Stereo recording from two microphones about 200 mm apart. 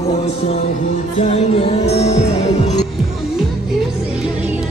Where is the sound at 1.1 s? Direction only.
30° left (ahead or behind).